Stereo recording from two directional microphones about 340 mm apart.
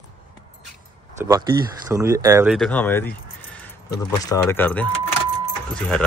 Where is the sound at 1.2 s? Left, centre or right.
Centre.